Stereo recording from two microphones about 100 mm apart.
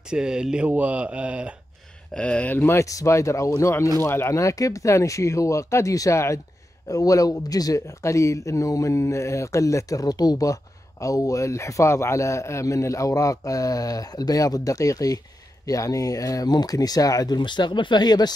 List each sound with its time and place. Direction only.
0.1 s speech: 10° right (ahead or behind)
2.1 s speech: 10° left (ahead or behind)
2.8 s speech: 35° left (ahead or behind)